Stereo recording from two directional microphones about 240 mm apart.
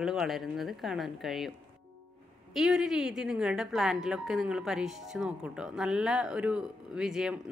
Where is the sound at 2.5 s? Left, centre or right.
Centre.